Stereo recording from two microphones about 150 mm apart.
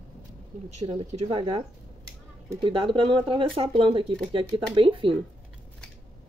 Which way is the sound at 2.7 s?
35° right (ahead or behind).